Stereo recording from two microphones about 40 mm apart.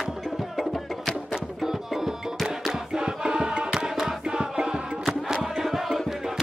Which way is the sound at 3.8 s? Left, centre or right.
Centre.